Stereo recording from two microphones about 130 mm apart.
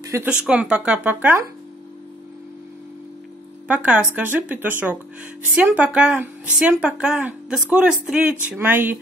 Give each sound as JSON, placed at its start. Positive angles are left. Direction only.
{"t": 0.0, "sound": "a sound", "side_deg": -20}
{"t": 0.3, "sound": "speech", "side_deg": -10}
{"t": 3.6, "sound": "speech", "side_deg": -10}